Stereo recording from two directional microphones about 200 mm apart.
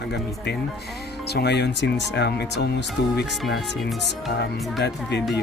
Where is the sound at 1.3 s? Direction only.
55° left (ahead or behind).